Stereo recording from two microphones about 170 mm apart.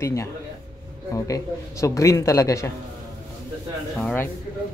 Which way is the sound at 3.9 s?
10° left (ahead or behind).